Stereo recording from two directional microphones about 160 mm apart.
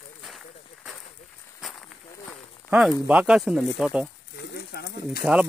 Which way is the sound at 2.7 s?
5° right (ahead or behind).